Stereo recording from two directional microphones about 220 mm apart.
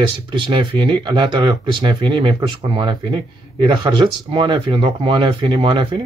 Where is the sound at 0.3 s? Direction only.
20° right (ahead or behind).